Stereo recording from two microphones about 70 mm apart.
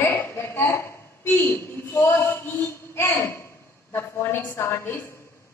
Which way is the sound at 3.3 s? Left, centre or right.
Left.